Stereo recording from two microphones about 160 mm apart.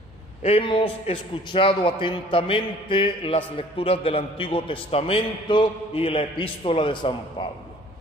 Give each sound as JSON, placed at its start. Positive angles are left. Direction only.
{"t": 0.4, "sound": "a man's voice", "side_deg": 35}